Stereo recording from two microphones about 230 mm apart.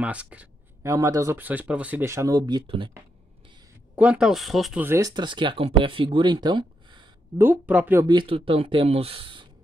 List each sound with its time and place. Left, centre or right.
0.0 s speech: centre; by 2.9 s right
3.9 s speech: centre
7.4 s speech: centre